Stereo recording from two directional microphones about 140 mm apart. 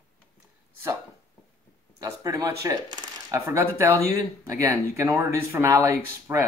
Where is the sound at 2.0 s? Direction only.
25° right (ahead or behind).